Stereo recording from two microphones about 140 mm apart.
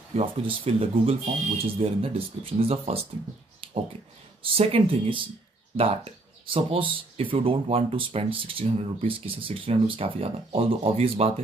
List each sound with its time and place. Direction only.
0.1 s speech: 40° right (ahead or behind)
3.6 s a sound: 40° right (ahead or behind)
4.4 s speech: 45° right (ahead or behind)